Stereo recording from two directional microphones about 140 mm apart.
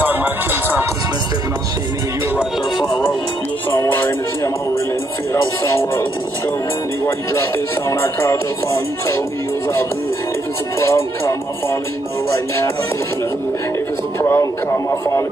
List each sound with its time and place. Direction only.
0.0 s music: 15° right (ahead or behind)
3.7 s music: 15° left (ahead or behind)
5.3 s music: 20° left (ahead or behind)
7.1 s speech: 20° left (ahead or behind)
10.8 s music: 20° left (ahead or behind)
12.3 s a man's voice: 20° left (ahead or behind)
14.2 s a man's voice: 15° left (ahead or behind)